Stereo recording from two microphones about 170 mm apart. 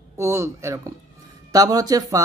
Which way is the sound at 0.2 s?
15° right (ahead or behind).